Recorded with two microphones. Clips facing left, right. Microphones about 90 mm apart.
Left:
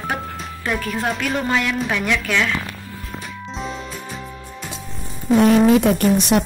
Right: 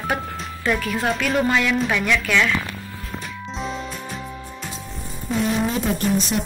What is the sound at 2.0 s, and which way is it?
Speech, 25° left (ahead or behind).